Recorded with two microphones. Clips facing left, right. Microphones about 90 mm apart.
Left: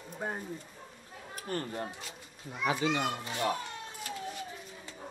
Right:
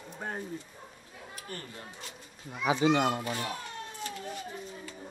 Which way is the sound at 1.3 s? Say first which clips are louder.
Left 8 dB; 40° left (ahead or behind).